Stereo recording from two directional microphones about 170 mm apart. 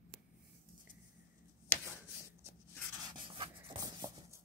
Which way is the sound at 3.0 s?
30° right (ahead or behind).